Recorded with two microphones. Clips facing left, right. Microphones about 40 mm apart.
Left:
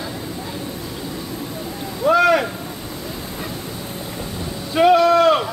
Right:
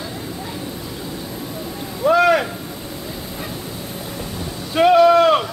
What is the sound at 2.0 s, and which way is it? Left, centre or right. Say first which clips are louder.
Boat: even; centre.